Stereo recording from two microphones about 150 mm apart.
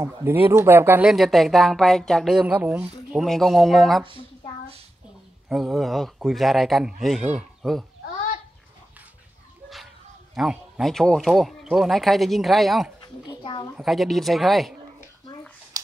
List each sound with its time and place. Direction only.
0.0 s speech: 15° right (ahead or behind)
1.1 s speech: centre (ahead or behind)
3.2 s speech: centre (ahead or behind)
5.5 s speech: centre (ahead or behind)
10.3 s speech: 5° right (ahead or behind)
13.4 s a woman's voice: 35° left (ahead or behind)
13.7 s speech: centre (ahead or behind)
15.7 s a sound: 25° right (ahead or behind)